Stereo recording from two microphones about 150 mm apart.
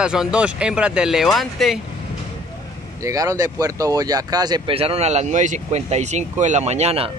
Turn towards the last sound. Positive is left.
turn(degrees=-45)  # may be behind; listen again after turning